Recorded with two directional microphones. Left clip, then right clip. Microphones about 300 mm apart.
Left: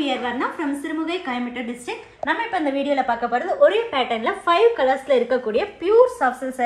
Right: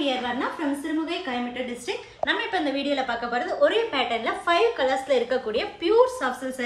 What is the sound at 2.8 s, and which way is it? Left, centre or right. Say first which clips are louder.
A woman's voice: left 5 dB; left.